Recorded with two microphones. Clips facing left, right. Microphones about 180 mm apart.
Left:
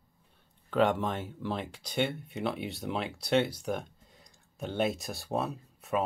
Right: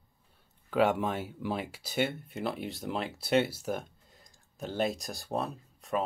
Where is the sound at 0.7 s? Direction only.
5° right (ahead or behind).